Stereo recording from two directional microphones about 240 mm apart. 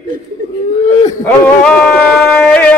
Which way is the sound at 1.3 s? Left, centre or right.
Centre.